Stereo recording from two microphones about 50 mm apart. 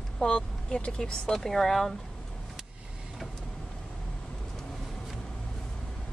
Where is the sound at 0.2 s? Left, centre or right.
Centre.